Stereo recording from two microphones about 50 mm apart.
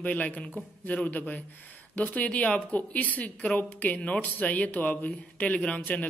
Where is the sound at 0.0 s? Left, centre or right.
Left.